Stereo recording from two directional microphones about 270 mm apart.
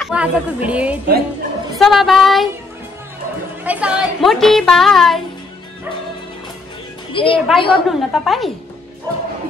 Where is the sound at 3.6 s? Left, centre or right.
Centre.